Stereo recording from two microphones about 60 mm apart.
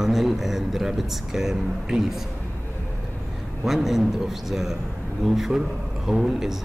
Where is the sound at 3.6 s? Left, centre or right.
Centre.